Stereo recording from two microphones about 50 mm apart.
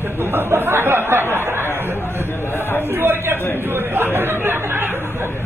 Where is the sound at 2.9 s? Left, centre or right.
Right.